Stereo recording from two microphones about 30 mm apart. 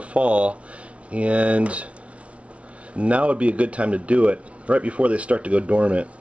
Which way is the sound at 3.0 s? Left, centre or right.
Right.